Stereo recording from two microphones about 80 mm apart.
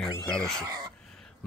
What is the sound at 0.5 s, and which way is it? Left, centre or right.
Speech, right.